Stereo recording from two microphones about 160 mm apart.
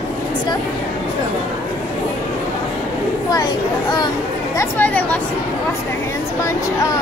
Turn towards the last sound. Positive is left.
turn(degrees=10)  # may be behind; listen again after turning